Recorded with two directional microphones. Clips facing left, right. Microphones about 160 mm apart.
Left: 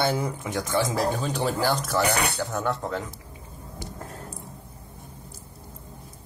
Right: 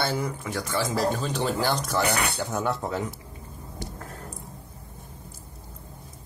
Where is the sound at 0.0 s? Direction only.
15° left (ahead or behind).